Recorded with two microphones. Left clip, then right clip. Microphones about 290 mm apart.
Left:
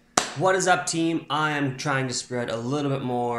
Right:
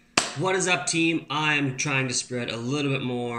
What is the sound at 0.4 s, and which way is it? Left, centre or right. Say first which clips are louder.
Speech: left 6 dB; centre.